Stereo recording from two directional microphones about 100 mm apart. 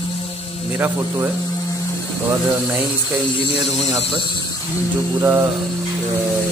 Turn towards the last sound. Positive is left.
turn(degrees=-20)  # may be behind; listen again after turning